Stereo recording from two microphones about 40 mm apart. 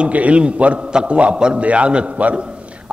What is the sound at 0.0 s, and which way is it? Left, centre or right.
A man's voice, right.